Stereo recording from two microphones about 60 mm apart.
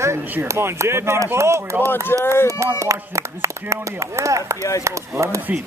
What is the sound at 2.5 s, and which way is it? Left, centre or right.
Speech, right.